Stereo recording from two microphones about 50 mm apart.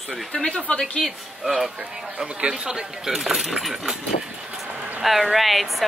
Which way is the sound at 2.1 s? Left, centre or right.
Centre.